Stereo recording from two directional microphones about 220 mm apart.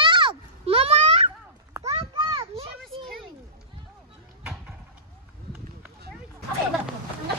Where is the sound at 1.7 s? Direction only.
15° right (ahead or behind).